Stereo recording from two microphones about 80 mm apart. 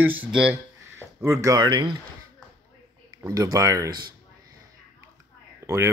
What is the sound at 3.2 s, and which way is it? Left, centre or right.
Speech, right.